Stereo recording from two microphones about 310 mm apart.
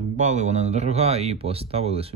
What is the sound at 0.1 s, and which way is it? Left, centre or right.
Speech, right.